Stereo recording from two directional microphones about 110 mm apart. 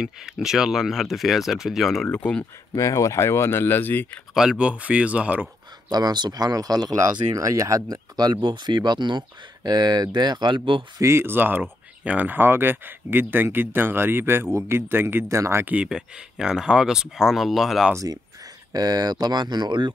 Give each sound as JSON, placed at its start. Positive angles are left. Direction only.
{"t": 0.0, "sound": "speech", "side_deg": -5}
{"t": 2.0, "sound": "speech", "side_deg": 10}
{"t": 2.7, "sound": "speech", "side_deg": 30}
{"t": 4.3, "sound": "speech", "side_deg": -5}
{"t": 5.9, "sound": "speech", "side_deg": -40}
{"t": 11.0, "sound": "speech", "side_deg": -25}
{"t": 17.9, "sound": "speech", "side_deg": -35}